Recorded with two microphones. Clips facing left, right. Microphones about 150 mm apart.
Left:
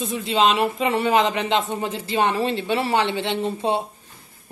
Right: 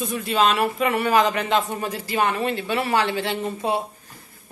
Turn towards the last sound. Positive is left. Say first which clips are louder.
# left 2 dB
turn(degrees=25)  # may be behind; listen again after turning